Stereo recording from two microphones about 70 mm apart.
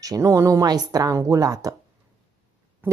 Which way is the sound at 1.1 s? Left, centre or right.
Right.